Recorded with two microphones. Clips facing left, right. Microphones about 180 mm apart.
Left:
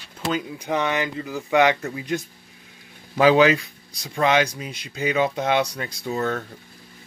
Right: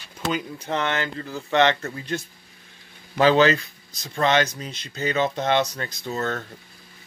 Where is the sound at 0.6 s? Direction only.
10° left (ahead or behind).